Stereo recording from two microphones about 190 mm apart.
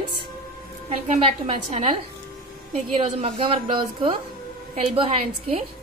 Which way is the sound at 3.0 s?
35° right (ahead or behind).